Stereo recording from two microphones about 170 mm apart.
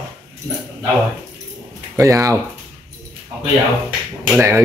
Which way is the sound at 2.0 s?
15° right (ahead or behind).